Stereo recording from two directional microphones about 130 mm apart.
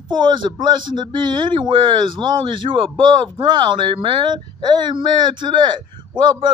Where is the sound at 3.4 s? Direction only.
40° right (ahead or behind).